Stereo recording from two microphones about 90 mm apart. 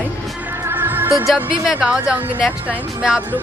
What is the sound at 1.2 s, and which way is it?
Speech, 5° right (ahead or behind).